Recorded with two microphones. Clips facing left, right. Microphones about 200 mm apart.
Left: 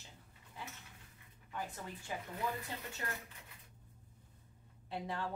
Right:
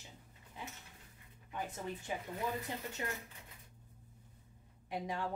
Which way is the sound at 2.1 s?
20° right (ahead or behind).